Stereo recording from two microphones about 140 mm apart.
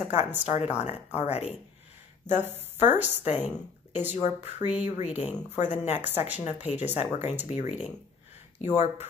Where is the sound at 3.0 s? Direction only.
55° left (ahead or behind).